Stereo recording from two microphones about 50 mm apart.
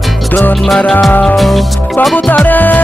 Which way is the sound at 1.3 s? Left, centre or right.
Centre.